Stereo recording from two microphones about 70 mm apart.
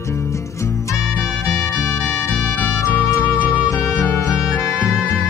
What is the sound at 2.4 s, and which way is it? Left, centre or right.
Music, left.